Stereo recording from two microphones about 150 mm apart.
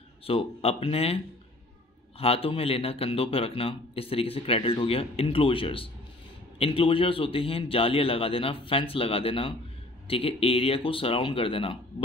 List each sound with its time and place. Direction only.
0.2 s speech: 40° left (ahead or behind)